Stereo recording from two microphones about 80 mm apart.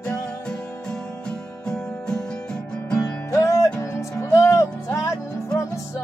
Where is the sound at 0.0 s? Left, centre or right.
Centre.